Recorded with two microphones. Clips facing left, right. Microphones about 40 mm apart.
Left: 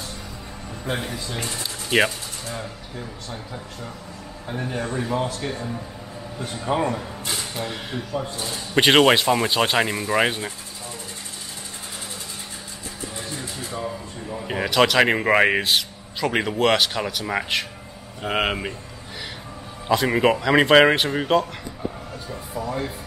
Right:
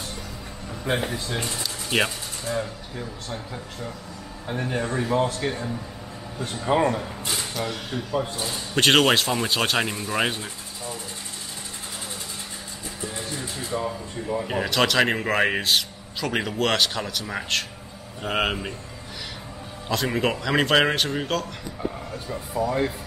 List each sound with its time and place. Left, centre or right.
0.8 s speech: centre
1.4 s speech: centre
2.0 s a man's voice: centre
6.6 s a man's voice: centre
7.5 s speech: centre
8.1 s a man's voice: centre
8.7 s speech: centre
13.0 s a sound: centre
14.5 s speech: centre
17.2 s a man's voice: left
18.2 s speech: centre
19.9 s speech: centre
22.3 s speech: centre